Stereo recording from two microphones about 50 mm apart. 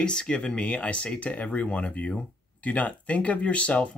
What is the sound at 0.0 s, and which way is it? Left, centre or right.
Speech, centre.